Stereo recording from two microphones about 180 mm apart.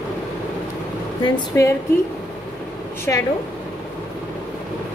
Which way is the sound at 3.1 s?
10° left (ahead or behind).